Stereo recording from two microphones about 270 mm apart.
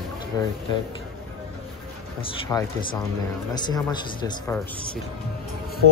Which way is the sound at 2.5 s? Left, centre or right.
Centre.